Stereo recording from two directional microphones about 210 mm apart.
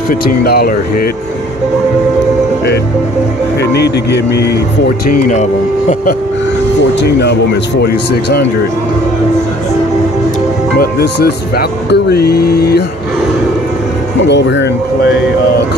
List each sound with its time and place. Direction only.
0.1 s speech: 45° left (ahead or behind)
3.7 s speech: 50° left (ahead or behind)
5.3 s speech: 35° left (ahead or behind)
7.0 s speech: 50° left (ahead or behind)
10.8 s speech: 50° left (ahead or behind)
14.2 s speech: 55° left (ahead or behind)